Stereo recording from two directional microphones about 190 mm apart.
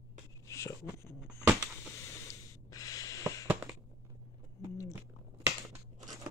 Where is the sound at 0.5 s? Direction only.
15° left (ahead or behind).